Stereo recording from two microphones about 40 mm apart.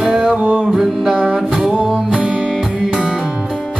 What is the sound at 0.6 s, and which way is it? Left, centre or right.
Music, centre.